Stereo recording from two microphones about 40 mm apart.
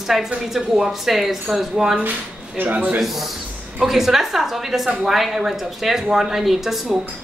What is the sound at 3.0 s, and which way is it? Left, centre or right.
A man's voice, centre.